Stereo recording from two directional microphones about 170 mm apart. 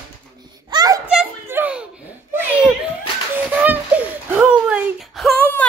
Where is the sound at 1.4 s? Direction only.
10° right (ahead or behind).